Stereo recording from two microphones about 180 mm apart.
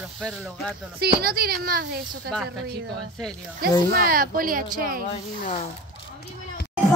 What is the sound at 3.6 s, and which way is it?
Speech, 55° right (ahead or behind).